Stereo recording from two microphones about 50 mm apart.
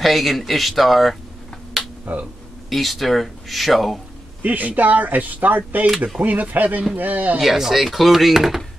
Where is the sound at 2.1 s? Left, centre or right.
Right.